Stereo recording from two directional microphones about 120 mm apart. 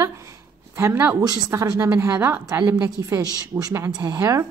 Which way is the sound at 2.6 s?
30° right (ahead or behind).